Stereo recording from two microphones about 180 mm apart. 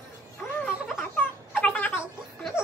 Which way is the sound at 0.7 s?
5° right (ahead or behind).